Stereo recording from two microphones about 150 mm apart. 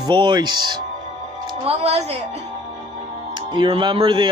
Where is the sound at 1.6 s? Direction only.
45° right (ahead or behind).